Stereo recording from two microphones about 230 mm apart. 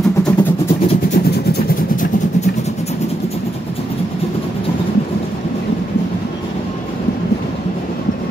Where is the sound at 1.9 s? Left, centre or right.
Left.